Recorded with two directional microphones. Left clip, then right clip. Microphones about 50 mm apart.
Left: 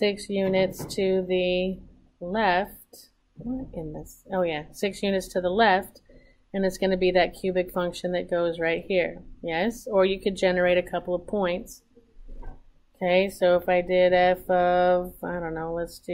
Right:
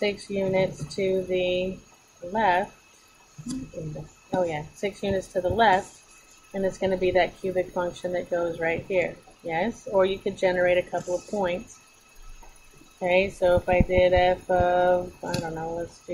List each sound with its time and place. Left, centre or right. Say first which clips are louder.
0.0 s speech: left 1 dB; centre
4.3 s speech: even; centre
13.0 s speech: even; centre